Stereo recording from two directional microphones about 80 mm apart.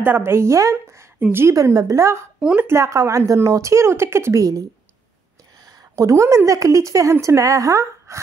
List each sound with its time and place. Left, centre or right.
0.0 s speech: right
5.9 s speech: right